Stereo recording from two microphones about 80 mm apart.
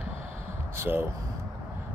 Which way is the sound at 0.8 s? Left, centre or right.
Right.